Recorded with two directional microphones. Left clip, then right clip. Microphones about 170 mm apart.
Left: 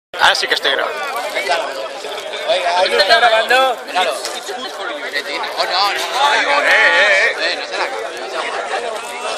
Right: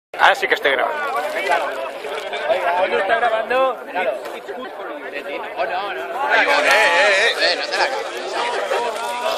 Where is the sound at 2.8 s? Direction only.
55° left (ahead or behind).